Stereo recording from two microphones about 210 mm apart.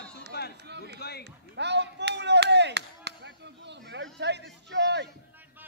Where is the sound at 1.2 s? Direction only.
55° right (ahead or behind).